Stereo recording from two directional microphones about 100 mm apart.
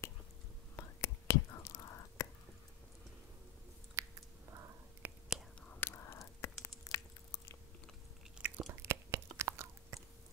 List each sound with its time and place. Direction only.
0.7 s whispering: 30° left (ahead or behind)
4.0 s chewing: 30° right (ahead or behind)
5.0 s whispering: 15° right (ahead or behind)
5.8 s whispering: 25° left (ahead or behind)
6.1 s a sound: 30° left (ahead or behind)
8.4 s chewing: 15° right (ahead or behind)
8.6 s a sound: 30° right (ahead or behind)